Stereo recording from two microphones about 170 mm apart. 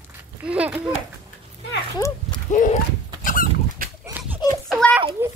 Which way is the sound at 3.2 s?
50° left (ahead or behind).